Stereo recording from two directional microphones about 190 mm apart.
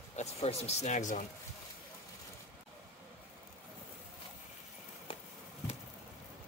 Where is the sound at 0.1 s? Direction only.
35° left (ahead or behind).